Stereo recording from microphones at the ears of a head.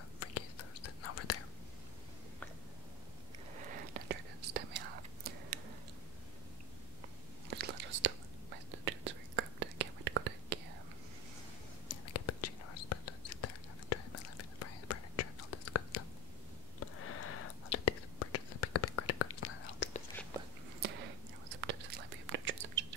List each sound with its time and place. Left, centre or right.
0.2 s whispering: left
3.5 s whispering: right
7.4 s whispering: right
11.9 s whispering: left
20.8 s whispering: right